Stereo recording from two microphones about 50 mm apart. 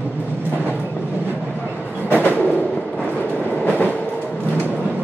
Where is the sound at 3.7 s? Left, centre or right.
Left.